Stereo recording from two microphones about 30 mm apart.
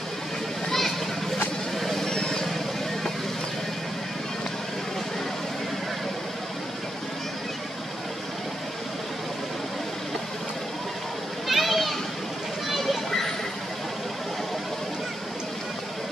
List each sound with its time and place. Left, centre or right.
0.7 s children playing: centre
1.8 s vehicle: centre
2.0 s vehicle: left
11.4 s children playing: centre
12.6 s a sound: centre